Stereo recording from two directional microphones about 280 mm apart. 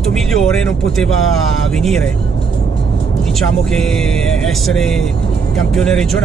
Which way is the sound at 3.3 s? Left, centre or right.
Centre.